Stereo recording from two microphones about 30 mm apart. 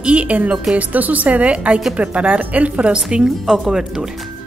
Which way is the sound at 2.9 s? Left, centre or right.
Right.